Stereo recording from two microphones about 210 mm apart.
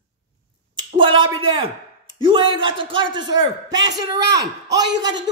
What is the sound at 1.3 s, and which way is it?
A woman's voice, 25° right (ahead or behind).